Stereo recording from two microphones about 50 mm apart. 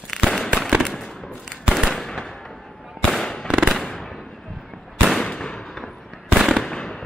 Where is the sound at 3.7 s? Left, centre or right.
Centre.